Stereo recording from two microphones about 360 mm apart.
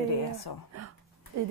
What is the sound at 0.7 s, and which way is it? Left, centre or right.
Speech, right.